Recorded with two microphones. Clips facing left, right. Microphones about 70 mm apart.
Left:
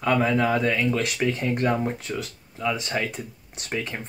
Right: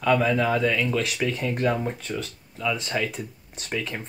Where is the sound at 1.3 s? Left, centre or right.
Centre.